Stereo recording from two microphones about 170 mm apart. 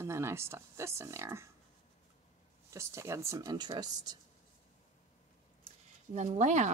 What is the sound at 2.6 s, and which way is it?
Speech, 15° right (ahead or behind).